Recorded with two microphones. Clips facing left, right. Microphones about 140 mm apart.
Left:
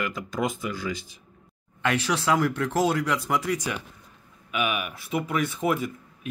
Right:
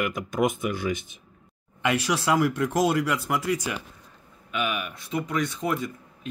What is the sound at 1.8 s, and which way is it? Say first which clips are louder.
Speech: even; 10° right (ahead or behind).